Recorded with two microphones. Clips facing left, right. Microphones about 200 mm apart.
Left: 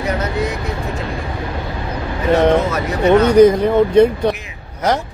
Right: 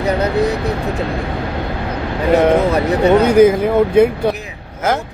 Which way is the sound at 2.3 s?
5° right (ahead or behind).